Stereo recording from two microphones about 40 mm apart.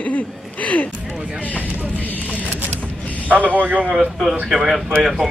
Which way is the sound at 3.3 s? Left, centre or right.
Right.